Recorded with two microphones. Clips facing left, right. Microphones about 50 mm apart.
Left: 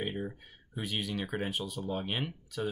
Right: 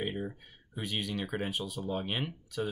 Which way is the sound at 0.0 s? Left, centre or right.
Centre.